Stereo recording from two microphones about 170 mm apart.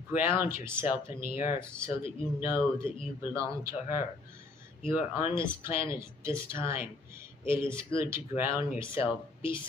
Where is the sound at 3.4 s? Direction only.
20° right (ahead or behind).